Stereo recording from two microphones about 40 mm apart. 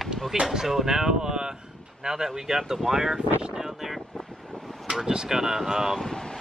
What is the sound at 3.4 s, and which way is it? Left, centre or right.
Wind noise, centre.